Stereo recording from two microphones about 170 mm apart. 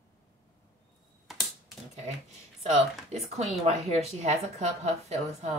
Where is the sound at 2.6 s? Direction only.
40° right (ahead or behind).